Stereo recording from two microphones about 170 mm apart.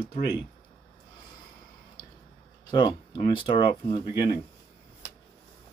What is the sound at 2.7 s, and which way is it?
Speech, 25° left (ahead or behind).